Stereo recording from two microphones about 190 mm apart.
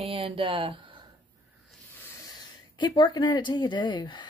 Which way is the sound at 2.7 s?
25° left (ahead or behind).